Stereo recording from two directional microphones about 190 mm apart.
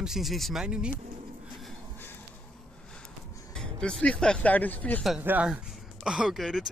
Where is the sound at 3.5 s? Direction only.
5° left (ahead or behind).